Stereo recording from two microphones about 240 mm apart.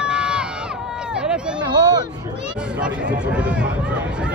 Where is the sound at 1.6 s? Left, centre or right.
Centre.